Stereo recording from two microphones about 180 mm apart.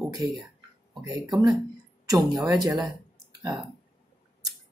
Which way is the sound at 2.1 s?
20° right (ahead or behind).